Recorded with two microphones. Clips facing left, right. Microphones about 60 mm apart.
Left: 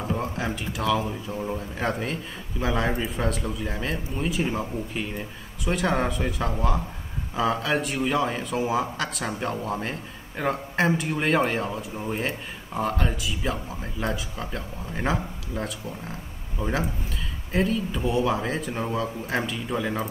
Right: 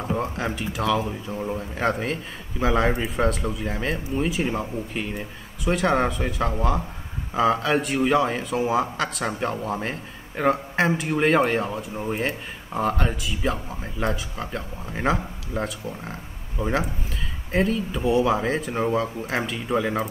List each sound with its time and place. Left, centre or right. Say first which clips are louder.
0.2 s a man's voice: right 2 dB; centre
19.5 s speech: right 4 dB; centre